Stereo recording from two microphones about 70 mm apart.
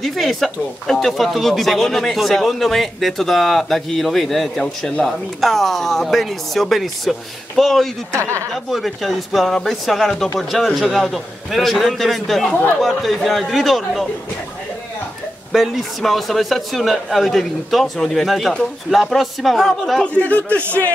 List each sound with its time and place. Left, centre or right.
0.0 s speech: centre
8.1 s a woman's voice: right
8.6 s speech: centre
15.5 s speech: centre
20.2 s a man's voice: left